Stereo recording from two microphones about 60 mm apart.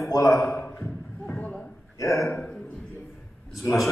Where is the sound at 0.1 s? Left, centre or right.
Left.